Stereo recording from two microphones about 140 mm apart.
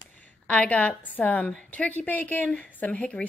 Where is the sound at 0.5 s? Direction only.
10° left (ahead or behind).